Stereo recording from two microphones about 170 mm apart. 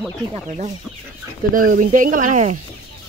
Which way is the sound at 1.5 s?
55° right (ahead or behind).